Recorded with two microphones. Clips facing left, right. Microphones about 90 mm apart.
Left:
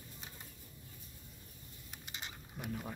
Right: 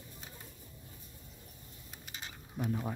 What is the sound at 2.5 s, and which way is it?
Speech, 25° right (ahead or behind).